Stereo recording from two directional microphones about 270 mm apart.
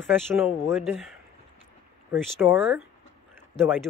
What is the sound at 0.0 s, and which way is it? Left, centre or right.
Speech, centre.